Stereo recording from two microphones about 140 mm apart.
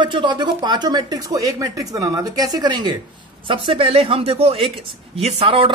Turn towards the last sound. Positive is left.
turn(degrees=-40)  # may be behind; listen again after turning